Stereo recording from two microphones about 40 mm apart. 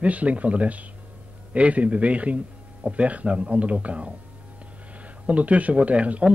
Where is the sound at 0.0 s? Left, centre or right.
Right.